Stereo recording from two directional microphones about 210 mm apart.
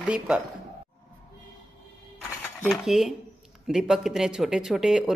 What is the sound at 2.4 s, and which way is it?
Coin, centre (ahead or behind).